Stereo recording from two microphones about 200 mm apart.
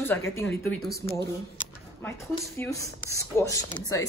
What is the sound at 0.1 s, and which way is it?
Speech, 10° left (ahead or behind).